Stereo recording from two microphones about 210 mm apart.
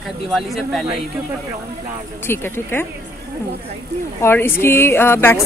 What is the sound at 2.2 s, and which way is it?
Speech, 10° left (ahead or behind).